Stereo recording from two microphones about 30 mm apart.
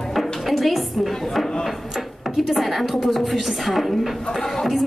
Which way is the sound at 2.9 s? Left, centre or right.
Centre.